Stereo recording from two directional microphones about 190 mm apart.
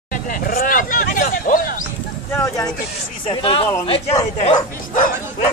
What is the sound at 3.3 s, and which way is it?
Speech, 30° left (ahead or behind).